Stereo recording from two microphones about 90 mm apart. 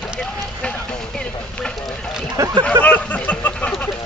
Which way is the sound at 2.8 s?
20° left (ahead or behind).